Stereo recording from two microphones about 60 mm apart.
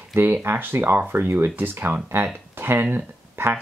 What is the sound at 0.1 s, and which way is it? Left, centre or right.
Speech, right.